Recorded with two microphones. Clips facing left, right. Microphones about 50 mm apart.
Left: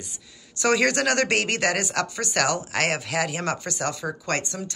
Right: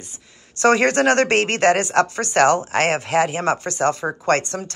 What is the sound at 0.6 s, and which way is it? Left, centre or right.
Speech, right.